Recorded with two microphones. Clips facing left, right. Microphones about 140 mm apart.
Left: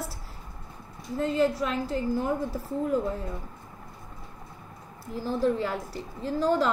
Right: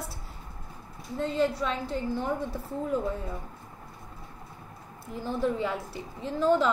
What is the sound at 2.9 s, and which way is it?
Speech, centre (ahead or behind).